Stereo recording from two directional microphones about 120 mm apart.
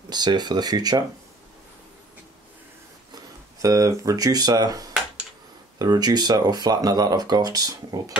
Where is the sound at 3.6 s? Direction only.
25° right (ahead or behind).